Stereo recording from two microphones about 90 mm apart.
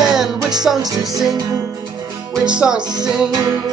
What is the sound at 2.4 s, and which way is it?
Music, 10° right (ahead or behind).